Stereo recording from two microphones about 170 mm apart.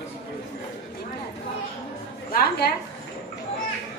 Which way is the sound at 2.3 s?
65° left (ahead or behind).